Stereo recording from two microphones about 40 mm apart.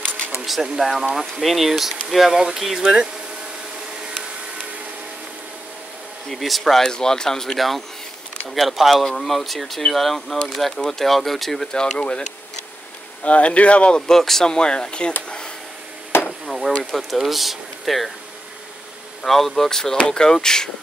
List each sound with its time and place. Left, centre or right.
0.7 s speech: centre
6.3 s speech: centre
6.6 s speech: centre
7.5 s speech: centre
12.0 s speech: left
14.0 s speech: centre
14.5 s speech: left
15.2 s a sound: left
16.1 s chop: left
16.4 s a sound: centre
16.9 s speech: centre
19.2 s speech: centre